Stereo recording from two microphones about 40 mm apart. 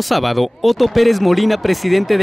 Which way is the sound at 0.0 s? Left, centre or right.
Centre.